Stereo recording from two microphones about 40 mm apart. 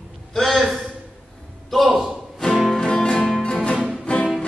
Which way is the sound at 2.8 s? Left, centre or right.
Centre.